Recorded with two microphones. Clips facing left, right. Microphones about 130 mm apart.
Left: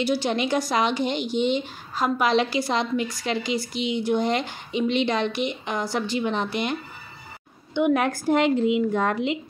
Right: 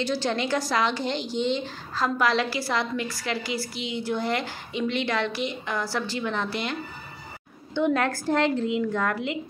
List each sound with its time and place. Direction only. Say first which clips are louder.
0.0 s a woman's voice: left 3 dB; 15° left (ahead or behind)